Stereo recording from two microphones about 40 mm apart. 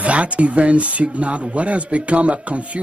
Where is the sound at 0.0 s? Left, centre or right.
Right.